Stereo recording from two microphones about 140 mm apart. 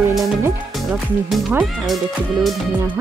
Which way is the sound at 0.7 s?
Centre (ahead or behind).